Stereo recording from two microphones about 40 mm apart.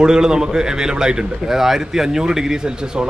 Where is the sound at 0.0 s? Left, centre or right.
Centre.